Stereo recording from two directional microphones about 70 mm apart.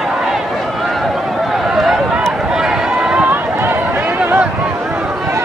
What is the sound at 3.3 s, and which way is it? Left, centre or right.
Run, right.